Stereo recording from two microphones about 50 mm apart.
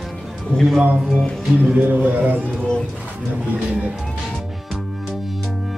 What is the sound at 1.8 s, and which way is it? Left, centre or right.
Speech, right.